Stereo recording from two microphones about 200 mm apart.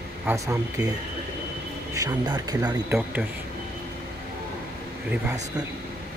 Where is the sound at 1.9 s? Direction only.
15° right (ahead or behind).